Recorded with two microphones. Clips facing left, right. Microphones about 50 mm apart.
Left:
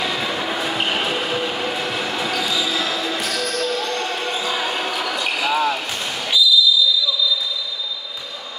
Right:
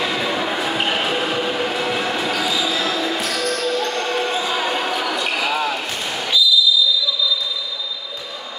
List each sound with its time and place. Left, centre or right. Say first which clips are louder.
0.0 s train: right 2 dB; centre
4.4 s basketball bounce: right 2 dB; centre